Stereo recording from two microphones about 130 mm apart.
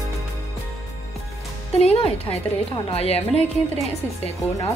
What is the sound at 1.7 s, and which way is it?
A woman's voice, 50° left (ahead or behind).